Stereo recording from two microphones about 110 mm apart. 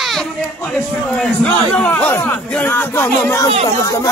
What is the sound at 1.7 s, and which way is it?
Speech, 15° left (ahead or behind).